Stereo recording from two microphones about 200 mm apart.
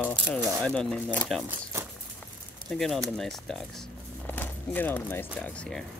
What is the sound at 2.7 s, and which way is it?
Speech, 5° left (ahead or behind).